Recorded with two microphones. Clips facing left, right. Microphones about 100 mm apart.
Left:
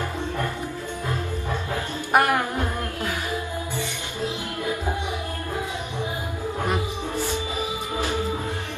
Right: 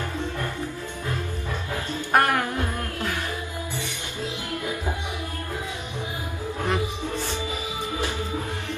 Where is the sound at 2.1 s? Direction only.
10° left (ahead or behind).